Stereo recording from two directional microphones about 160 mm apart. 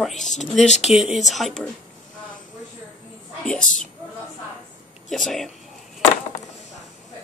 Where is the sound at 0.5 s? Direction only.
45° left (ahead or behind).